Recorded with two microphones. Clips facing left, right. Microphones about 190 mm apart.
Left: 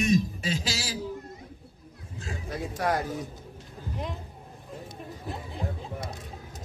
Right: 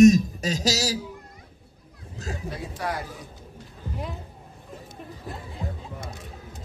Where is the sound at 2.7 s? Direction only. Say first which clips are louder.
Left 4 dB; 45° left (ahead or behind).